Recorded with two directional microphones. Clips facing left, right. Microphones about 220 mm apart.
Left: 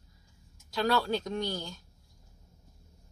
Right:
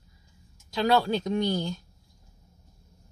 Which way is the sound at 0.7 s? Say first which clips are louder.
Right 4 dB; 15° right (ahead or behind).